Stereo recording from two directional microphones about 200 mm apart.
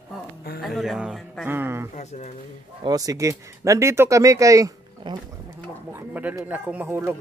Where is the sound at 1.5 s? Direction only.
10° right (ahead or behind).